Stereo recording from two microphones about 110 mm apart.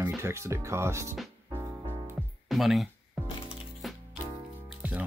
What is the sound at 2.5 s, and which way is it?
Speech, centre (ahead or behind).